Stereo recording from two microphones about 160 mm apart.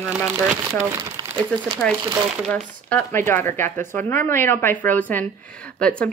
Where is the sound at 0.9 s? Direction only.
25° right (ahead or behind).